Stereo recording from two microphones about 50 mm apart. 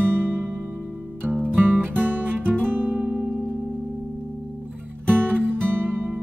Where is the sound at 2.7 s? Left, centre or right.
Right.